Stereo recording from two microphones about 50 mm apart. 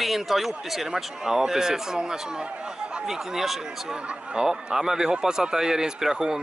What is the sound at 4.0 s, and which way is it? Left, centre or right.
Speech, centre.